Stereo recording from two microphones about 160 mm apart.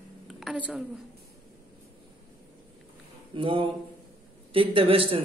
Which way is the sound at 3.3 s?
35° right (ahead or behind).